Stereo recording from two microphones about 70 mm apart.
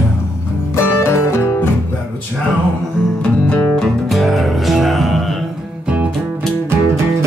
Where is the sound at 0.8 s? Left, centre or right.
Left.